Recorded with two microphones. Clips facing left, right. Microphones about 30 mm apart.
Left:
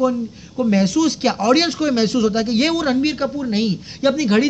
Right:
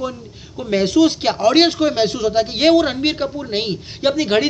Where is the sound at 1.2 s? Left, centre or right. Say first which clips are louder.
Right 2 dB; right.